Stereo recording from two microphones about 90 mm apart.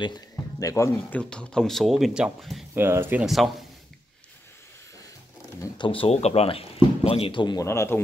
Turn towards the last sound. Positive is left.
turn(degrees=30)  # may be behind; listen again after turning